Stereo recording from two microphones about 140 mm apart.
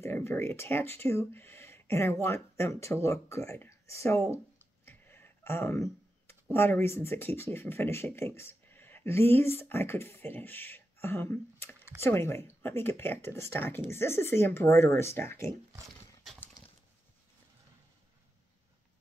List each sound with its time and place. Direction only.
0.0 s speech: 20° left (ahead or behind)
4.8 s typing: 15° left (ahead or behind)
6.5 s speech: 15° left (ahead or behind)